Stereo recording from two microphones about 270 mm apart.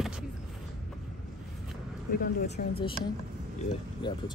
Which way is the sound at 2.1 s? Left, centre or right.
Left.